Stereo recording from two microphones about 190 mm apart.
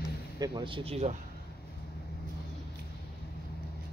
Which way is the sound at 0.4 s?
25° right (ahead or behind).